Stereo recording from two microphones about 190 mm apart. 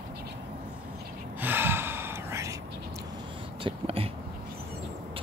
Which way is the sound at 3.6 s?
30° right (ahead or behind).